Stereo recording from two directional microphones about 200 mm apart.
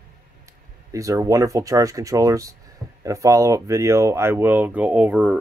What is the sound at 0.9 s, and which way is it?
Speech, 15° right (ahead or behind).